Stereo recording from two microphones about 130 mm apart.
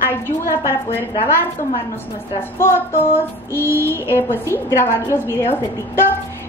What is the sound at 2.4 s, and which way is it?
A woman's voice, 20° left (ahead or behind).